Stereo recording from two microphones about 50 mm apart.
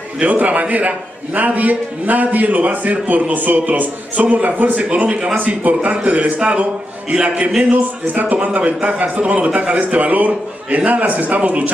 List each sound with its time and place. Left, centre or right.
0.2 s a man's voice: right